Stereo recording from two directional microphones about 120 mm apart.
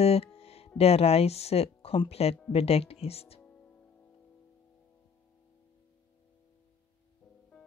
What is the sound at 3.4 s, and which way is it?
Music, 10° left (ahead or behind).